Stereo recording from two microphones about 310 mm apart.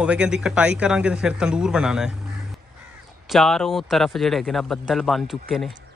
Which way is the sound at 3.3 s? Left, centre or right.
Centre.